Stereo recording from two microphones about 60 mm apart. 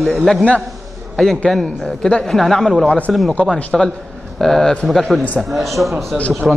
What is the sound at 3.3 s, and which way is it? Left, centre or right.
Speech, centre.